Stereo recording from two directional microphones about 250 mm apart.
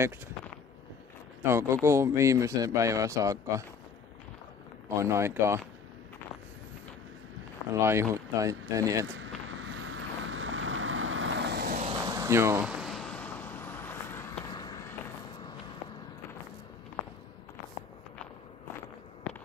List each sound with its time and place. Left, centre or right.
1.4 s a man's voice: centre
4.8 s a man's voice: centre
7.8 s a man's voice: centre
9.6 s vehicle: right
12.1 s vehicle: centre